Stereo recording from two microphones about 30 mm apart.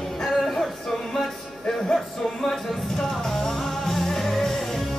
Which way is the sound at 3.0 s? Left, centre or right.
Centre.